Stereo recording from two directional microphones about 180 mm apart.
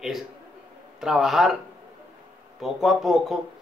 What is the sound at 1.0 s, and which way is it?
Speech, centre (ahead or behind).